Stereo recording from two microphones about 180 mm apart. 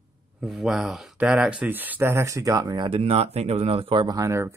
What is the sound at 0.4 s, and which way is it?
Speech, centre (ahead or behind).